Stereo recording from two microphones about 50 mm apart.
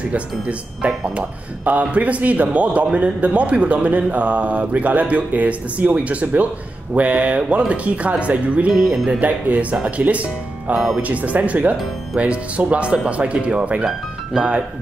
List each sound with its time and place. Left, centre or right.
1.1 s a man's voice: right
8.7 s speech: centre
9.2 s a man's voice: right
13.8 s speech: centre